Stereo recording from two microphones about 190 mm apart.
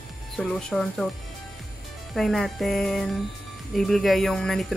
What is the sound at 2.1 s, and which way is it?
Speech, centre (ahead or behind).